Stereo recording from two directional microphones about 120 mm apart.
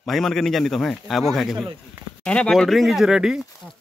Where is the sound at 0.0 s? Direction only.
Centre (ahead or behind).